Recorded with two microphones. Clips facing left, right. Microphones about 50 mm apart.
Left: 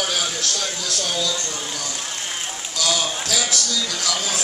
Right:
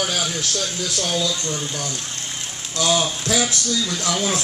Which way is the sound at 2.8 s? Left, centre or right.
Right.